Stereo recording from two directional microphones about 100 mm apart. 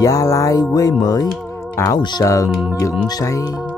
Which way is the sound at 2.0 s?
45° left (ahead or behind).